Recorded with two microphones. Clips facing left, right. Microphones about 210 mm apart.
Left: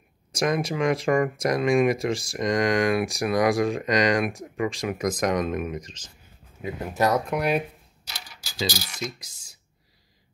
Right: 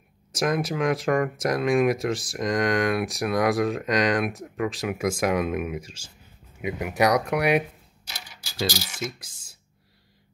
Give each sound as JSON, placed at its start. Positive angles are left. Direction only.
{"t": 0.3, "sound": "speech", "side_deg": 0}
{"t": 8.5, "sound": "speech", "side_deg": -5}